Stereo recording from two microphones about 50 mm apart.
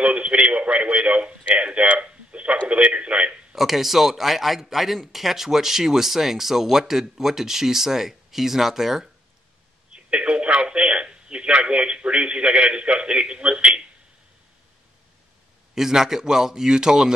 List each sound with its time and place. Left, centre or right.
0.0 s a man's voice: right
3.5 s speech: centre
9.9 s telephone: right
15.7 s speech: centre